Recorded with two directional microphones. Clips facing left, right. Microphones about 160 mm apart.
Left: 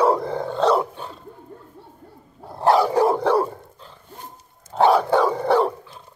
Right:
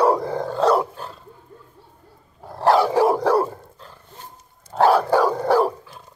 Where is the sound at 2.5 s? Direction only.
Centre (ahead or behind).